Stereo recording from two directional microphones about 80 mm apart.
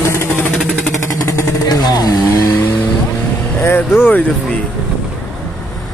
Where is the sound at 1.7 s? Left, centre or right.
Left.